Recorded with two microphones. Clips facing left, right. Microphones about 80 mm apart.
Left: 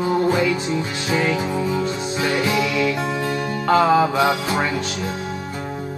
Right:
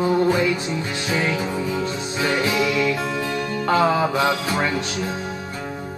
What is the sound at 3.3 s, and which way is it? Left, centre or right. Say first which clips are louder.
Music: left 1 dB; left.